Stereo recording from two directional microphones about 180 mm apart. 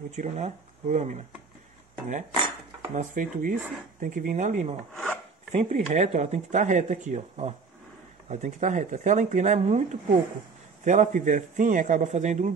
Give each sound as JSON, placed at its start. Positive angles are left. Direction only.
{"t": 0.1, "sound": "speech", "side_deg": -40}
{"t": 2.9, "sound": "a man's voice", "side_deg": -45}
{"t": 4.9, "sound": "filing", "side_deg": 5}
{"t": 5.5, "sound": "a man's voice", "side_deg": -40}